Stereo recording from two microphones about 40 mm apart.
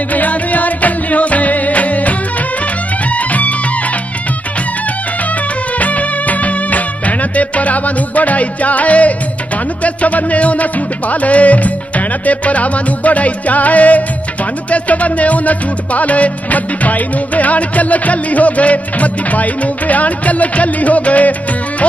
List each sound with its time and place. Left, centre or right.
0.1 s music: left
5.8 s music: left